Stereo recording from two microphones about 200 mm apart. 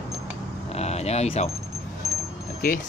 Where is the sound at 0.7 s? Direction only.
30° left (ahead or behind).